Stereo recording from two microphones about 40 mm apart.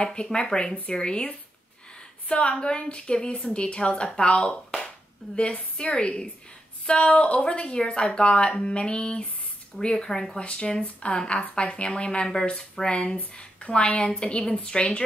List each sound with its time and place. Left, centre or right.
0.0 s a woman's voice: left
4.6 s clapping: centre
5.4 s a woman's voice: left
10.4 s a woman's voice: left